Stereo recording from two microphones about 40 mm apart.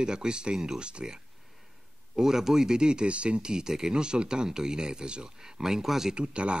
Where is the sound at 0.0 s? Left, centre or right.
Centre.